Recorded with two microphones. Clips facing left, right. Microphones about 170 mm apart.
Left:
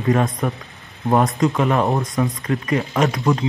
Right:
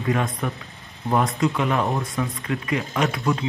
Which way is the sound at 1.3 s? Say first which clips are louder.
Left 4 dB; 40° left (ahead or behind).